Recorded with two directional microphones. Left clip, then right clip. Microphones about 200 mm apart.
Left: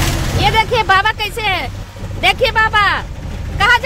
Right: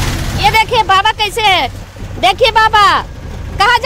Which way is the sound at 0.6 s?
5° right (ahead or behind).